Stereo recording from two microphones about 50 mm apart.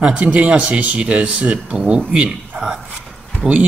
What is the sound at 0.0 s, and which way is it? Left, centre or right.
A man's voice, right.